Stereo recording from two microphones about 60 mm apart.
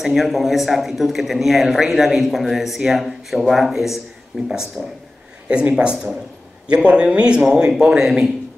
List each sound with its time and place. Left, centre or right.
0.0 s a man's voice: centre
4.8 s speech: right